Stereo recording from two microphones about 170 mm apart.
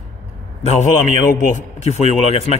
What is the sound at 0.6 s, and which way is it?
A man's voice, 40° left (ahead or behind).